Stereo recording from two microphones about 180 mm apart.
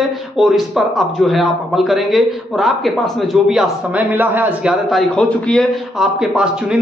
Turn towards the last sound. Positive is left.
turn(degrees=-5)  # may be behind; listen again after turning